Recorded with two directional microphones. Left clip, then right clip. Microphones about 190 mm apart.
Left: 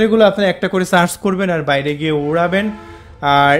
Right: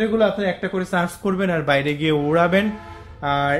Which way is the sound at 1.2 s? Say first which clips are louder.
Left 5 dB; 35° left (ahead or behind).